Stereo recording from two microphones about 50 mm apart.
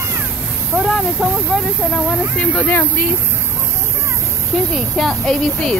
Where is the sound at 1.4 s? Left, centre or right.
Centre.